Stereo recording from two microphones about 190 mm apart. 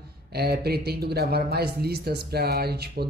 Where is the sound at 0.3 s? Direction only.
55° right (ahead or behind).